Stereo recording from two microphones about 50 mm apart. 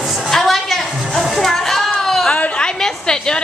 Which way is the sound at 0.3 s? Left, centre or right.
Centre.